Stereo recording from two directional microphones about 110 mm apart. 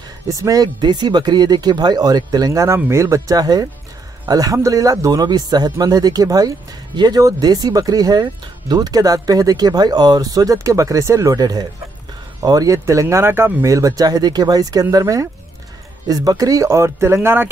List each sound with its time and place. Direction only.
0.3 s speech: 30° right (ahead or behind)